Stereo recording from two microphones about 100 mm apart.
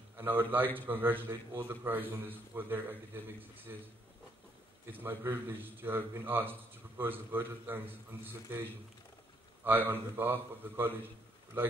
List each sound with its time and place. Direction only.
0.2 s a man's voice: 20° right (ahead or behind)
4.9 s a man's voice: 20° right (ahead or behind)
9.7 s a man's voice: 20° right (ahead or behind)